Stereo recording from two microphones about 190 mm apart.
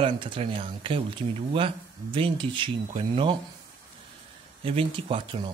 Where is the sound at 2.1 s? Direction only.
25° right (ahead or behind).